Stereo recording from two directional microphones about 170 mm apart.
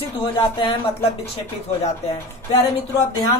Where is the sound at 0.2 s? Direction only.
30° left (ahead or behind).